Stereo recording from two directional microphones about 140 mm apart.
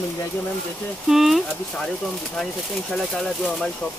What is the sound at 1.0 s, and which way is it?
Speech, centre (ahead or behind).